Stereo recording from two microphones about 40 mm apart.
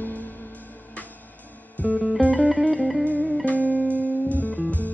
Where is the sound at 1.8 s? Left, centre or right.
Left.